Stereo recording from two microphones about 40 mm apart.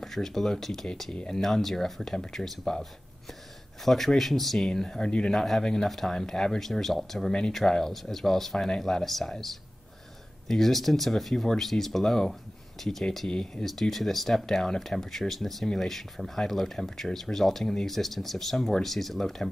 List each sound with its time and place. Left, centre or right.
0.0 s speech: centre
4.7 s speech: centre
5.3 s speech: centre
9.0 s speech: centre
10.5 s speech: centre
13.3 s speech: left
13.7 s speech: centre